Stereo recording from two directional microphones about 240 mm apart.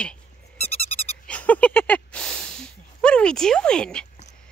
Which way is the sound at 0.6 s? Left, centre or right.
Left.